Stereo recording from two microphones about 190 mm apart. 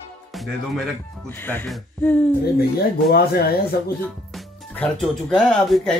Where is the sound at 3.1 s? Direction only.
55° left (ahead or behind).